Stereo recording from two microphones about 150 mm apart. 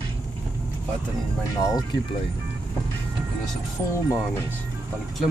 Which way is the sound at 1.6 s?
25° left (ahead or behind).